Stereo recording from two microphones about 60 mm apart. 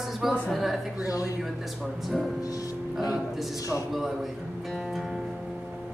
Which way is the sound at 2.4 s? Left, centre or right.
Left.